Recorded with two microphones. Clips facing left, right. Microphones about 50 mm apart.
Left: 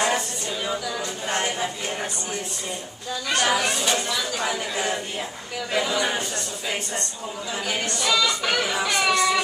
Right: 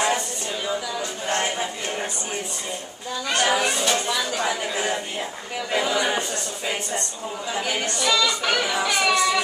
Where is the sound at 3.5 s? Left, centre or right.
Centre.